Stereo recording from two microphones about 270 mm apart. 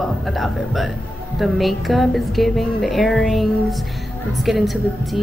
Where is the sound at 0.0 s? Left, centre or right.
Centre.